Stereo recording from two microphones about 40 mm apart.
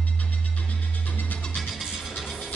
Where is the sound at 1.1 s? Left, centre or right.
Left.